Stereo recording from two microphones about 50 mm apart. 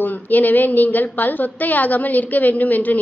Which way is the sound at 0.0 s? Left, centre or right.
Left.